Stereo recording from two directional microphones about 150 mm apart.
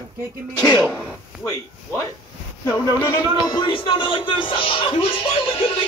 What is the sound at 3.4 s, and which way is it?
Music, 30° left (ahead or behind).